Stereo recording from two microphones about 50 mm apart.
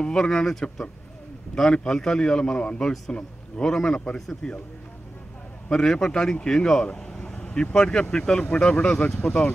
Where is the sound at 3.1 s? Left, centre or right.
Left.